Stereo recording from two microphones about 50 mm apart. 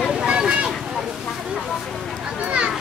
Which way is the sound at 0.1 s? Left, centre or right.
Centre.